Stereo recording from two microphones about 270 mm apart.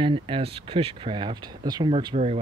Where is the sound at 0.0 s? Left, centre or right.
Centre.